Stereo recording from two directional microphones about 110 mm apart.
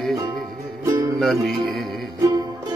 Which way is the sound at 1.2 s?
Centre (ahead or behind).